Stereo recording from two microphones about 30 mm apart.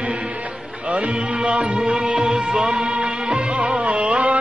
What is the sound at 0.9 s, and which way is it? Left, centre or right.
Music, right.